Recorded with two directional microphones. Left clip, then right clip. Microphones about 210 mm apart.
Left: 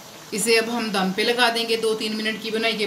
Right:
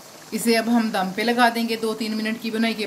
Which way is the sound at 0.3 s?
55° right (ahead or behind).